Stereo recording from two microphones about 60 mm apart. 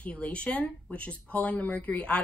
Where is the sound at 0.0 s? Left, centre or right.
Left.